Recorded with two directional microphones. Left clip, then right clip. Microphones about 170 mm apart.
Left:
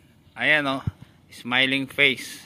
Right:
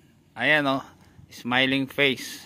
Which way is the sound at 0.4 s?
45° right (ahead or behind).